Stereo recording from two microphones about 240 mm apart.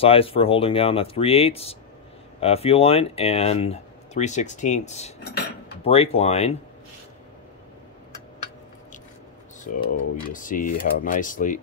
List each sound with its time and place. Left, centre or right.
0.0 s speech: left
9.7 s speech: left